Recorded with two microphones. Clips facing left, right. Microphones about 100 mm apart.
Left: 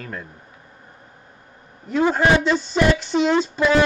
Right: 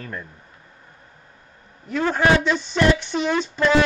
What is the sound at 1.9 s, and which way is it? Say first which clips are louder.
Music: left 4 dB; 10° left (ahead or behind).